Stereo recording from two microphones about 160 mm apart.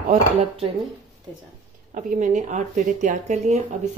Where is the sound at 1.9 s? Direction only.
55° right (ahead or behind).